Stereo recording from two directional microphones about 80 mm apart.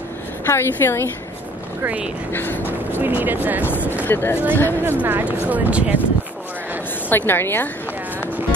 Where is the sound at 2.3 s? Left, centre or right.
Left.